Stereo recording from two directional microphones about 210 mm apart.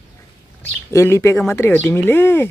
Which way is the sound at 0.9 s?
15° left (ahead or behind).